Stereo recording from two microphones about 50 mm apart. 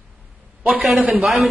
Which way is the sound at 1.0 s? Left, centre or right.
Right.